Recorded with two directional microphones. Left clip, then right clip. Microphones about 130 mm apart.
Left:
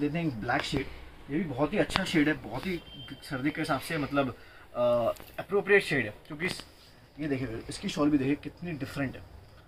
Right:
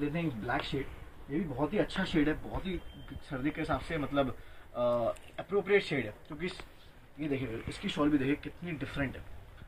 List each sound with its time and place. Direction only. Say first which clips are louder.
0.0 s speech: left 3 dB; 20° left (ahead or behind); by 6.4 s 5° left (ahead or behind)
7.2 s speech: left 2 dB; 20° left (ahead or behind)